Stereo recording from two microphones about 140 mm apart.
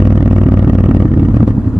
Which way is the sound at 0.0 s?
5° right (ahead or behind).